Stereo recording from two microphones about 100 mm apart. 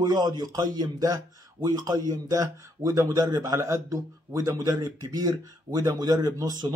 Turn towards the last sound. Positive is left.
turn(degrees=-40)  # may be behind; listen again after turning